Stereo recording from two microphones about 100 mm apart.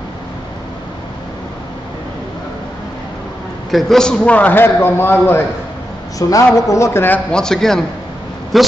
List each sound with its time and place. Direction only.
3.7 s a man's voice: 5° left (ahead or behind); by 5.4 s 20° left (ahead or behind)
6.1 s a man's voice: 35° left (ahead or behind)
7.2 s a man's voice: 5° left (ahead or behind)